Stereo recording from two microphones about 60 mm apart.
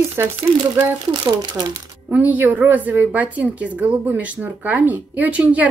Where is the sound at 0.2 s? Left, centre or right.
Right.